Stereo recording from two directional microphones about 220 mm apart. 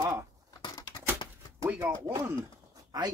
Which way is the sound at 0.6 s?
20° left (ahead or behind).